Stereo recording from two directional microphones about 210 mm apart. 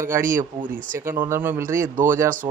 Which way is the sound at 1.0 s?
10° right (ahead or behind).